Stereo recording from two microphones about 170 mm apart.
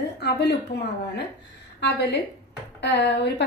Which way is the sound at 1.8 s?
90° left.